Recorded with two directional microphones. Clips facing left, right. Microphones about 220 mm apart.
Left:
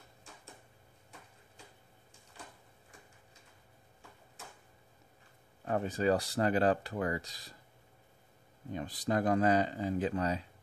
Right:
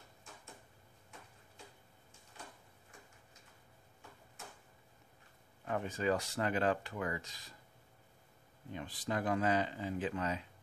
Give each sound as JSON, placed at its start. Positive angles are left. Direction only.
{"t": 5.7, "sound": "speech", "side_deg": 35}
{"t": 8.7, "sound": "speech", "side_deg": 40}